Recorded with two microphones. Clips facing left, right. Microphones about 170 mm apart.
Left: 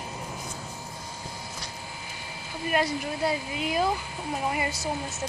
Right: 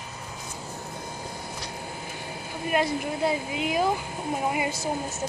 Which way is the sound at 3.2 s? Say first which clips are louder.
Right 2 dB; 20° right (ahead or behind).